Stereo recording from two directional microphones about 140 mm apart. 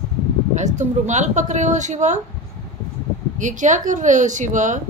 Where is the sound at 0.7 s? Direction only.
60° right (ahead or behind).